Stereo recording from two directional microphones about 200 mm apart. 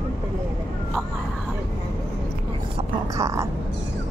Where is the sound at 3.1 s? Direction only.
15° right (ahead or behind).